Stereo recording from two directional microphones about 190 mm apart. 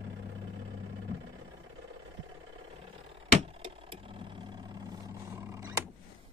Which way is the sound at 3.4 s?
30° right (ahead or behind).